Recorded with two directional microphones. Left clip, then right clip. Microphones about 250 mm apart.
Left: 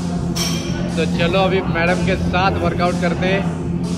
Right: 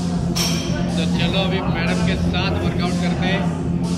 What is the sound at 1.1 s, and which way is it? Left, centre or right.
A man's voice, centre.